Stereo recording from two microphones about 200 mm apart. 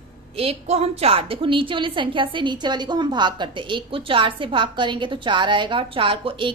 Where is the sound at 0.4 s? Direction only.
30° right (ahead or behind).